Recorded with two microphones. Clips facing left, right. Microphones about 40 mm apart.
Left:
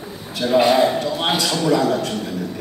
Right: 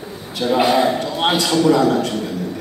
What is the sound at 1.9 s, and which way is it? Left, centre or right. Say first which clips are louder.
Speech: right 3 dB; right.